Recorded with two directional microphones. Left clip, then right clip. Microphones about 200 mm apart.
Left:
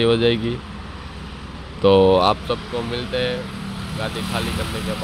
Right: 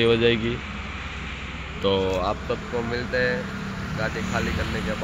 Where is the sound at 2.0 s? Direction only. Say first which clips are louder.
Left 10 dB; 60° left (ahead or behind).